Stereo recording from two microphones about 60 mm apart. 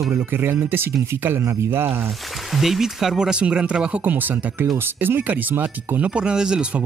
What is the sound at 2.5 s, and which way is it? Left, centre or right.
Speech, centre.